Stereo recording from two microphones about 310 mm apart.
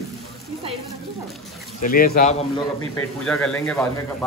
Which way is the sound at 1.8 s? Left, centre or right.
Left.